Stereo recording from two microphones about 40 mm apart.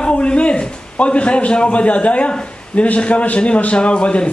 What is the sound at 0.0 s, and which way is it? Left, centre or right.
A man's voice, left.